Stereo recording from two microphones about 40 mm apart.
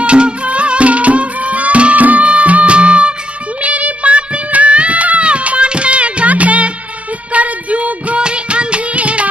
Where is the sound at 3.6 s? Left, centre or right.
Right.